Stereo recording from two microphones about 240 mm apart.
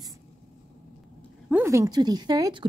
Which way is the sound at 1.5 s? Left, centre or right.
Centre.